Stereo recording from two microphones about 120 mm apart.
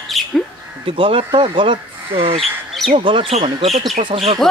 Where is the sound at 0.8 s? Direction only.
45° right (ahead or behind).